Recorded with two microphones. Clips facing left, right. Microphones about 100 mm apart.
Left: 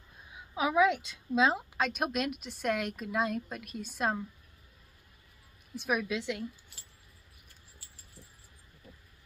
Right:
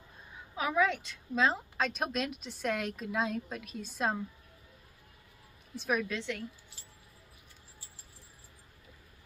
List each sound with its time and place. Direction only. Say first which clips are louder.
0.6 s a woman's voice: left 3 dB; 15° left (ahead or behind)
1.8 s speech: left 1 dB; 5° left (ahead or behind)
5.8 s a woman's voice: left 1 dB; 10° left (ahead or behind)